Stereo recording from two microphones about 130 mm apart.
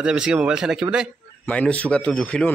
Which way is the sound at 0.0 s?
5° right (ahead or behind).